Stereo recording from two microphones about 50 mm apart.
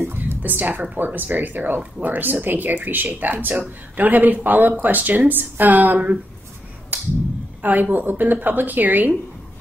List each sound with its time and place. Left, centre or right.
0.4 s speech: right
7.6 s speech: right